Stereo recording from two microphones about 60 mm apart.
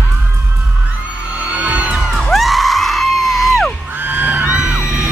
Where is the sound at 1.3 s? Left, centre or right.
Right.